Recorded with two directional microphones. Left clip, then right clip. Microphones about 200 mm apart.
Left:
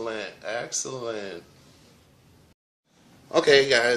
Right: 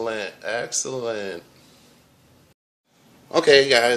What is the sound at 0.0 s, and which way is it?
Speech, 20° right (ahead or behind).